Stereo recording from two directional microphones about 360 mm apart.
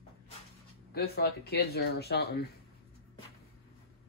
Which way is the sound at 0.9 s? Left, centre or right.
Left.